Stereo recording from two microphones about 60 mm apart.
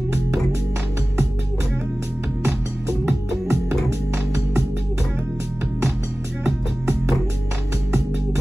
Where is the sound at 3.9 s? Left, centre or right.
Right.